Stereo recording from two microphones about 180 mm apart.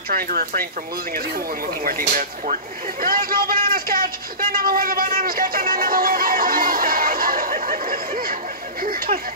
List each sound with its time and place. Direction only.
0.1 s a man's voice: 50° right (ahead or behind)
1.9 s a man's voice: 50° right (ahead or behind)